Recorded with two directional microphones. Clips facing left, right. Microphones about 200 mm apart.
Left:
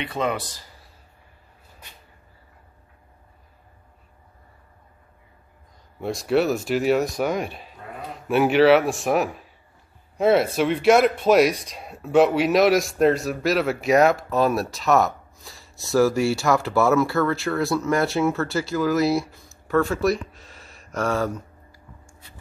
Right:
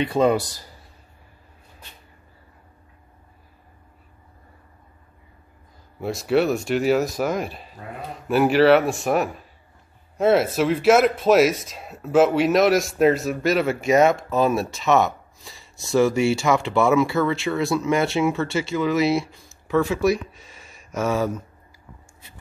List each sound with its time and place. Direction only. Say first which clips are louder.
0.0 s a man's voice: right 7 dB; 30° right (ahead or behind)
5.9 s speech: right 1 dB; centre (ahead or behind)
20.9 s speech: right 1 dB; 15° right (ahead or behind)